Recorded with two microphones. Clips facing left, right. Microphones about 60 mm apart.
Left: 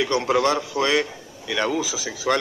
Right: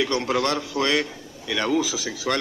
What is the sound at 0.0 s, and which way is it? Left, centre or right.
A woman's voice, centre.